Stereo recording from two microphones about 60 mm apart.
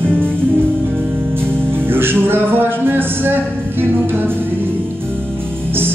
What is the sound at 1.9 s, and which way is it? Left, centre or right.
Music, right.